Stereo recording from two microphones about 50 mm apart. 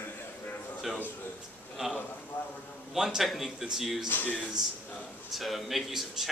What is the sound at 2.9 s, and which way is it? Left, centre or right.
Speech, centre.